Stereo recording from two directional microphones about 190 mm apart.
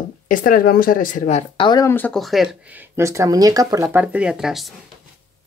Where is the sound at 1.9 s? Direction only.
5° left (ahead or behind); by 3.8 s 20° right (ahead or behind).